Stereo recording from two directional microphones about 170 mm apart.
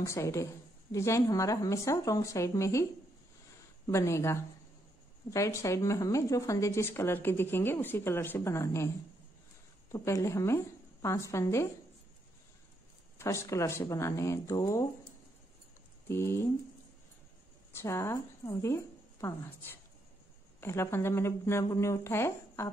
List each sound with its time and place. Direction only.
0.0 s a woman's voice: 15° left (ahead or behind)
13.2 s a woman's voice: 15° left (ahead or behind)
16.1 s a woman's voice: 15° left (ahead or behind)
17.8 s a woman's voice: 15° left (ahead or behind)
20.6 s a woman's voice: 15° left (ahead or behind)